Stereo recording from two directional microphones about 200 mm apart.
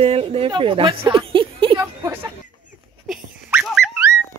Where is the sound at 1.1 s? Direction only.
25° right (ahead or behind).